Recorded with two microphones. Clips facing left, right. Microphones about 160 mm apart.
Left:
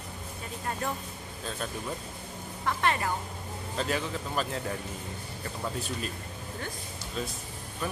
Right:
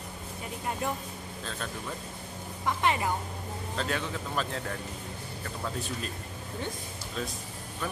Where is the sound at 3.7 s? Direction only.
5° left (ahead or behind).